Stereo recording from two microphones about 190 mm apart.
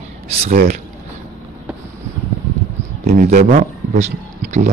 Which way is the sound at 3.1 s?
50° right (ahead or behind).